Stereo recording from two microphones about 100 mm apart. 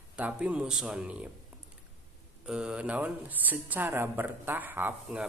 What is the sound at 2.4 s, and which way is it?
Speech, 10° right (ahead or behind).